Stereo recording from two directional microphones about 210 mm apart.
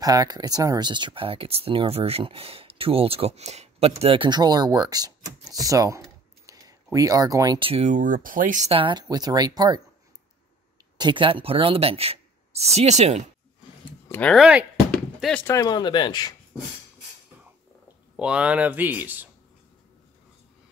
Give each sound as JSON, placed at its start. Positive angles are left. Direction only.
{"t": 0.0, "sound": "speech", "side_deg": -15}
{"t": 11.0, "sound": "speech", "side_deg": -20}
{"t": 14.0, "sound": "a sound", "side_deg": 10}
{"t": 15.4, "sound": "speech", "side_deg": 15}
{"t": 18.1, "sound": "speech", "side_deg": -5}